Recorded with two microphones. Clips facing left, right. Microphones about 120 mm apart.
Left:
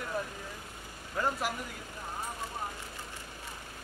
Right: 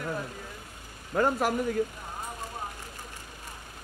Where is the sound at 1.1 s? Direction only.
55° right (ahead or behind).